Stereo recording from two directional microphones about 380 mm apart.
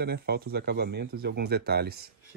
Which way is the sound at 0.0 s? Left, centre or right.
Right.